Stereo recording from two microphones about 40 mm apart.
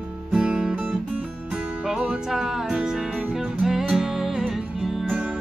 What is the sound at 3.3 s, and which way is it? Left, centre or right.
Music, centre.